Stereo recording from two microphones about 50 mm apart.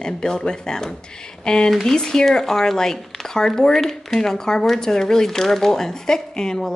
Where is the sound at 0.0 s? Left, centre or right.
Centre.